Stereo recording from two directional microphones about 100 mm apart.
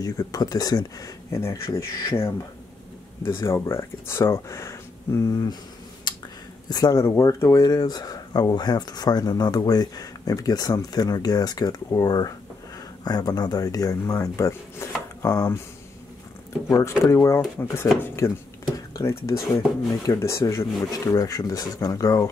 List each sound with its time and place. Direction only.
0.0 s speech: 40° left (ahead or behind)
3.3 s speech: 25° left (ahead or behind)
6.1 s a sound: 45° left (ahead or behind)
6.7 s speech: 40° left (ahead or behind)
16.6 s speech: 30° left (ahead or behind)